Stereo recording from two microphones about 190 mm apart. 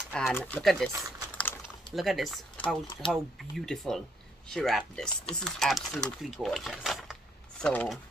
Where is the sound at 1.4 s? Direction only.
5° left (ahead or behind).